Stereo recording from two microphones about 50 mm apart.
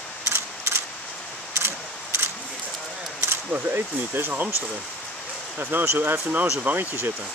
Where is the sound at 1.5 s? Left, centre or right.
Right.